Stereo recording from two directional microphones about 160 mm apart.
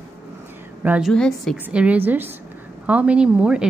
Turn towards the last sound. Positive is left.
turn(degrees=-5)  # may be behind; listen again after turning